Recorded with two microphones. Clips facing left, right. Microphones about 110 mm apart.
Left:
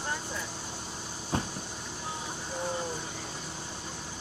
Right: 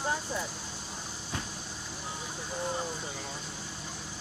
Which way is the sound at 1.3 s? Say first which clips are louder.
Left 7 dB; 35° left (ahead or behind).